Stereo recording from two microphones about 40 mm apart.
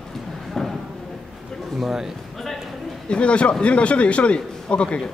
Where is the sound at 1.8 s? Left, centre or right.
Centre.